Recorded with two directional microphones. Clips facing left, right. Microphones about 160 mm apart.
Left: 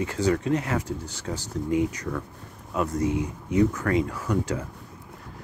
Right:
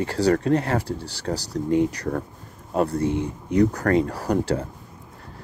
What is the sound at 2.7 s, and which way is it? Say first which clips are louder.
Speech: right 3 dB; 35° right (ahead or behind).